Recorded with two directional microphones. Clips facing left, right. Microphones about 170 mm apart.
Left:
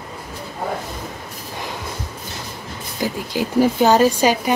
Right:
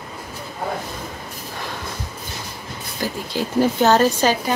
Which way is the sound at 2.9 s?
15° left (ahead or behind).